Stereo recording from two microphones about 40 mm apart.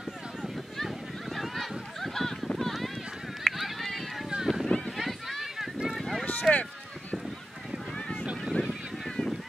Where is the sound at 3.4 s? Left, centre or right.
Centre.